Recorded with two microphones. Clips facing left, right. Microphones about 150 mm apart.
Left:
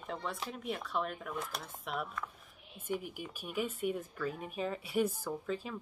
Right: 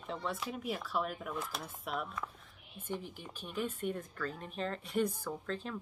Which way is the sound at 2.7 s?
10° left (ahead or behind).